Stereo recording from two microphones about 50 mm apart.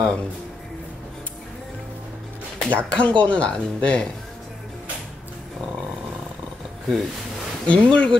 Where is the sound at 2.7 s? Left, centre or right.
Left.